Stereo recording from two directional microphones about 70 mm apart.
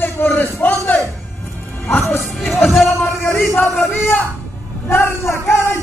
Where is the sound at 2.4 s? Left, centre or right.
Centre.